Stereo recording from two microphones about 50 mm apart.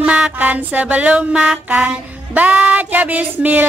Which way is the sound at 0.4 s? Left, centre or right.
Right.